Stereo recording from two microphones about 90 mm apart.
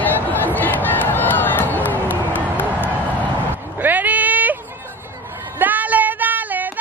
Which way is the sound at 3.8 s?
20° right (ahead or behind).